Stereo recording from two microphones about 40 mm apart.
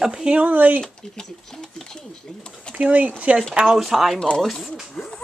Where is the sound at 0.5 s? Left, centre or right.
Right.